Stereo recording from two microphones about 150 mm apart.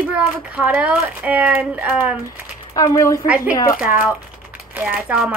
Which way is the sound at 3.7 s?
10° right (ahead or behind).